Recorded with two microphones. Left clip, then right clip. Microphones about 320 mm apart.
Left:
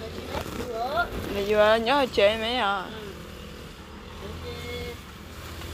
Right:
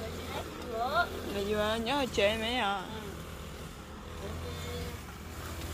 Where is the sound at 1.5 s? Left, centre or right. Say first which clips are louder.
Left 12 dB; centre.